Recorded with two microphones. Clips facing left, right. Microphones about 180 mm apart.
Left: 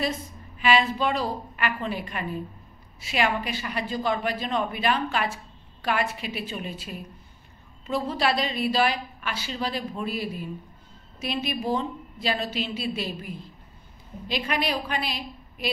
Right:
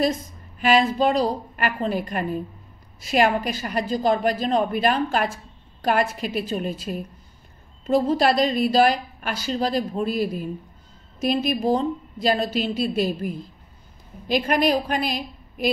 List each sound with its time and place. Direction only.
0.6 s a woman's voice: 45° right (ahead or behind)